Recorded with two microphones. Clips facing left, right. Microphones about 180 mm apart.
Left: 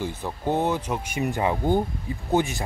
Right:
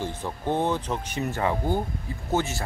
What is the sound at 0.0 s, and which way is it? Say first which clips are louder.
Speech: left 2 dB; 10° left (ahead or behind).